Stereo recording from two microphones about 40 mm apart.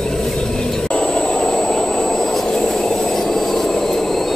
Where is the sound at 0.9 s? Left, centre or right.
Left; by 2.7 s centre.